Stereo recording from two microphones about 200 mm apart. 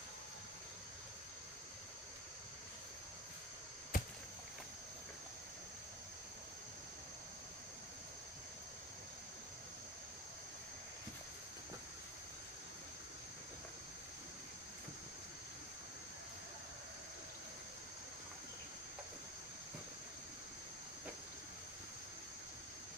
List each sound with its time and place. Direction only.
3.9 s chop: 40° left (ahead or behind)